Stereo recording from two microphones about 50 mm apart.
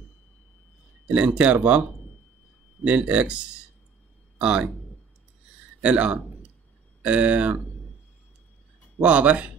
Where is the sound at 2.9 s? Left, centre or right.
Right.